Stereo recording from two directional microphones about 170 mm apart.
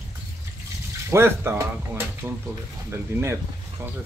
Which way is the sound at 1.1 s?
15° right (ahead or behind).